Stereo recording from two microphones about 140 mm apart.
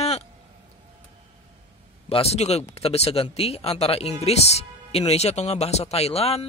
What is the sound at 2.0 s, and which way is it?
Speech, 45° left (ahead or behind).